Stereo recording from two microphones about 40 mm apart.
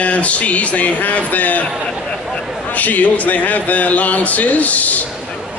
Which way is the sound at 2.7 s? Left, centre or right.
Left.